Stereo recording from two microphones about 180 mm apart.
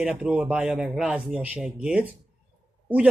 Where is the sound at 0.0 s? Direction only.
5° right (ahead or behind).